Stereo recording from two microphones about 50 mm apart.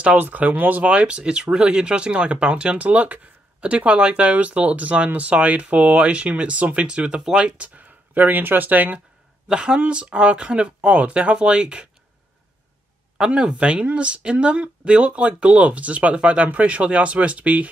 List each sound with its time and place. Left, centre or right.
0.2 s speech: right
9.5 s speech: centre
13.2 s speech: centre